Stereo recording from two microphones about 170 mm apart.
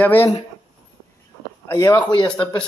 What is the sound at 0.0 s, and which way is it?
Speech, 10° left (ahead or behind).